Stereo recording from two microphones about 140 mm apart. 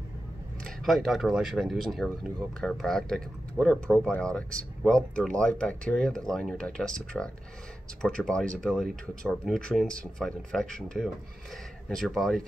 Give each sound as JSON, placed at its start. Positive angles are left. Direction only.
{"t": 0.7, "sound": "speech", "side_deg": 0}